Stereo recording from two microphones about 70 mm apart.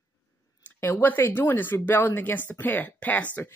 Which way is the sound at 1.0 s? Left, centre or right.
Left.